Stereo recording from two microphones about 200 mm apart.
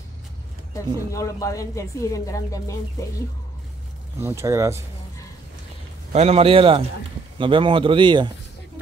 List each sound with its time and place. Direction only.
1.1 s speech: 15° left (ahead or behind)
4.2 s speech: 15° right (ahead or behind)
6.1 s a man's voice: 30° right (ahead or behind)